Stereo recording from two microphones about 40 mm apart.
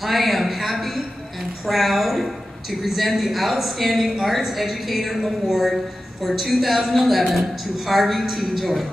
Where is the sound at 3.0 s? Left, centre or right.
Centre.